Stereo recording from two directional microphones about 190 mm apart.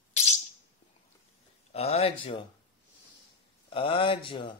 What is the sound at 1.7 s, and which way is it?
Speech, 35° left (ahead or behind).